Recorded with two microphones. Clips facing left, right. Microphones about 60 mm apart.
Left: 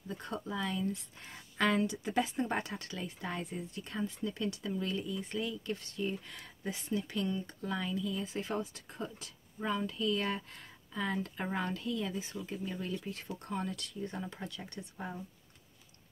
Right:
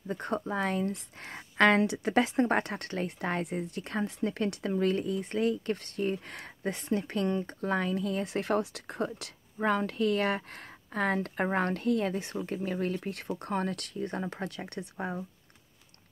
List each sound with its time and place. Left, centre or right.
0.1 s speech: right